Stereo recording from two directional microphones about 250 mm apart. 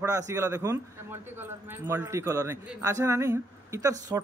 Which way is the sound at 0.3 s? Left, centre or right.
Centre.